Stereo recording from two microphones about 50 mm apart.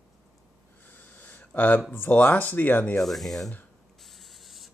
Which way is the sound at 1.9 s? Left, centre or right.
Left.